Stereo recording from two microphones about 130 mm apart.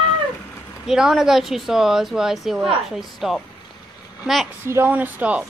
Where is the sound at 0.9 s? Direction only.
5° right (ahead or behind).